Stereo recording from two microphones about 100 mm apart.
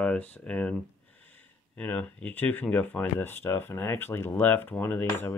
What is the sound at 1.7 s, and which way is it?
Speech, 15° left (ahead or behind).